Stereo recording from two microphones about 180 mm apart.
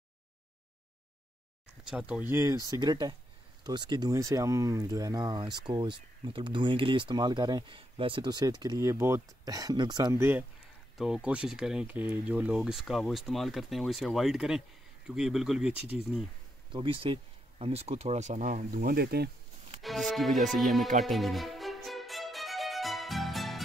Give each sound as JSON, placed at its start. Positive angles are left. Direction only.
{"t": 1.9, "sound": "speech", "side_deg": -5}
{"t": 16.7, "sound": "speech", "side_deg": -30}
{"t": 19.8, "sound": "speech", "side_deg": 0}
{"t": 21.0, "sound": "music", "side_deg": 0}